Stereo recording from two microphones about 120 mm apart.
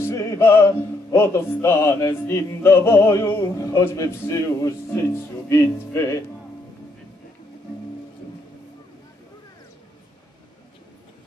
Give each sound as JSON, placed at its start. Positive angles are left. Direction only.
{"t": 0.0, "sound": "music", "side_deg": 25}